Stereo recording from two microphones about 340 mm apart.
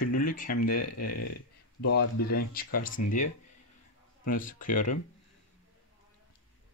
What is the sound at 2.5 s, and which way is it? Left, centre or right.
Speech, left.